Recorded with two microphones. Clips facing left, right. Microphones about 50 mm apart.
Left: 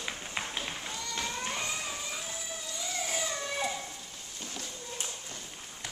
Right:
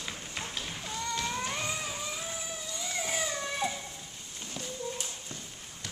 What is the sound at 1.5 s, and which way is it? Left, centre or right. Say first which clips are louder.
Music: right 1 dB; centre.